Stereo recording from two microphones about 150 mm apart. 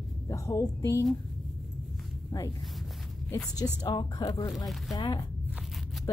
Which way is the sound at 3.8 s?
25° left (ahead or behind).